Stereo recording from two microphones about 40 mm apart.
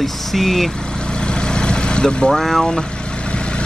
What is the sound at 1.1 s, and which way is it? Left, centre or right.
Vehicle, left.